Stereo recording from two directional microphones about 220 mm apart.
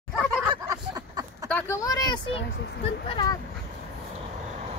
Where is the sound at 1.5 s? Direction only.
15° left (ahead or behind).